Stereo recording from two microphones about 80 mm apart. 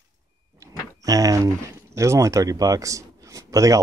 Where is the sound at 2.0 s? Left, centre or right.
Right.